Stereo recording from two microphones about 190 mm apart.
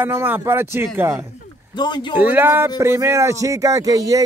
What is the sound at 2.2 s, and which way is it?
Speech, 10° right (ahead or behind).